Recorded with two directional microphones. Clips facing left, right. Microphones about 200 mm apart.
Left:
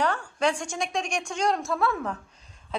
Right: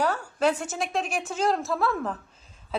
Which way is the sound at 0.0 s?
5° right (ahead or behind).